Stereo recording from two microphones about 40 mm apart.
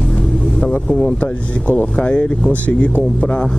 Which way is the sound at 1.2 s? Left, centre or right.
Left.